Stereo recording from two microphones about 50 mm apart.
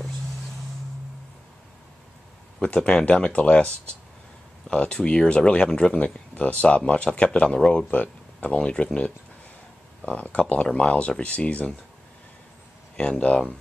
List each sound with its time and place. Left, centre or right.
2.6 s speech: left
12.9 s speech: left